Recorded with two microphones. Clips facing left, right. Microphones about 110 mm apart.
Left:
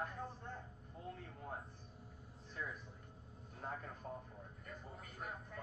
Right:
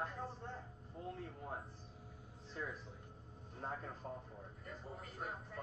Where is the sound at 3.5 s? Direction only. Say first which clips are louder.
Right 2 dB; 30° right (ahead or behind).